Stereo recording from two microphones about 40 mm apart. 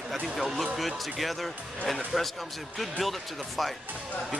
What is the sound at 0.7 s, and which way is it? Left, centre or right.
Speech, centre.